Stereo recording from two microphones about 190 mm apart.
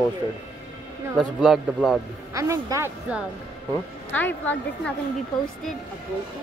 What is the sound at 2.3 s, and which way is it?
Speech, 15° right (ahead or behind).